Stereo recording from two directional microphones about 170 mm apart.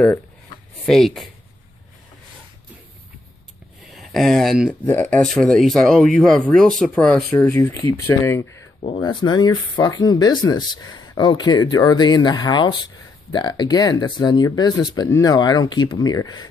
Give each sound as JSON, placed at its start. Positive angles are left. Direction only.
{"t": 0.8, "sound": "speech", "side_deg": 0}
{"t": 3.9, "sound": "speech", "side_deg": 0}
{"t": 4.8, "sound": "speech", "side_deg": 10}
{"t": 7.3, "sound": "speech", "side_deg": 15}
{"t": 8.9, "sound": "speech", "side_deg": 25}